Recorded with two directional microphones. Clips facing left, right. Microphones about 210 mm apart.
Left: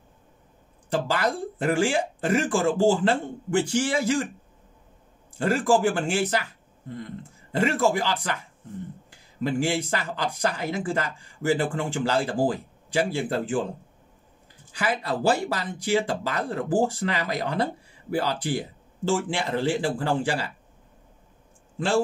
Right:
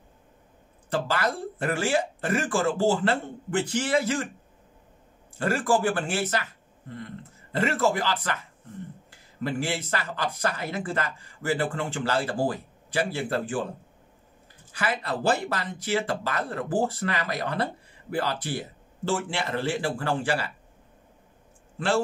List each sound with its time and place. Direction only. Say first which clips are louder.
0.8 s speech: left 2 dB; 15° left (ahead or behind)
5.4 s speech: left 3 dB; 15° left (ahead or behind)
7.5 s speech: left 2 dB; 15° left (ahead or behind)
14.7 s speech: left 2 dB; 15° left (ahead or behind)
21.7 s a man's voice: left 2 dB; 15° left (ahead or behind)